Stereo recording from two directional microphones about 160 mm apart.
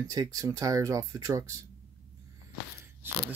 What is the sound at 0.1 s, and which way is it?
Speech, 20° right (ahead or behind).